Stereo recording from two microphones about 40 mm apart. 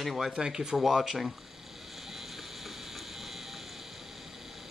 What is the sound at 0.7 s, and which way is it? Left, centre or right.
Speech, centre.